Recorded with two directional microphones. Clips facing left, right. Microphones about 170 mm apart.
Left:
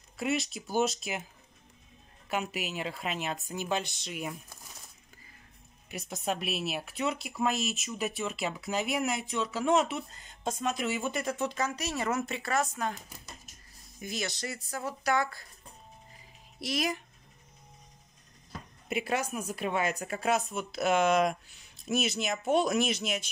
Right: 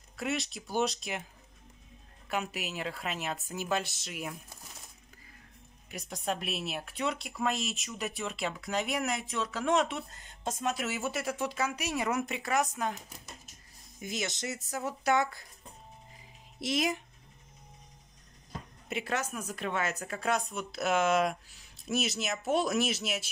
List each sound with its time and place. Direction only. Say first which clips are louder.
0.2 s speech: left 3 dB; centre (ahead or behind)
2.2 s speech: left 1 dB; centre (ahead or behind)
5.9 s speech: left 1 dB; 5° left (ahead or behind); by 12.9 s 15° right (ahead or behind)
14.0 s speech: even; 20° right (ahead or behind)
16.5 s speech: right 1 dB; 20° right (ahead or behind)
18.9 s speech: left 3 dB; 10° left (ahead or behind)